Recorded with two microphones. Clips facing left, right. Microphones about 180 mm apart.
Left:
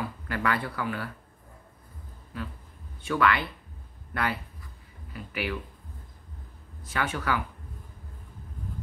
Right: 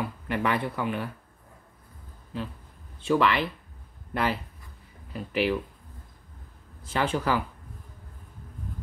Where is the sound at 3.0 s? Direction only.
20° right (ahead or behind).